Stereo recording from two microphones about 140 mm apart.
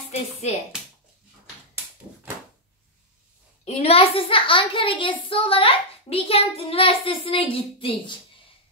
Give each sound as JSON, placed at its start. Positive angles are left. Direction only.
{"t": 0.1, "sound": "speech", "side_deg": 50}
{"t": 3.6, "sound": "a child's voice", "side_deg": 50}